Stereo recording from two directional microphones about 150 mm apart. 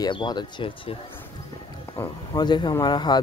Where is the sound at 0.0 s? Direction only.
30° left (ahead or behind).